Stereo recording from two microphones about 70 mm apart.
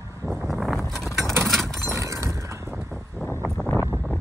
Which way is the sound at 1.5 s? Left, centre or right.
Centre.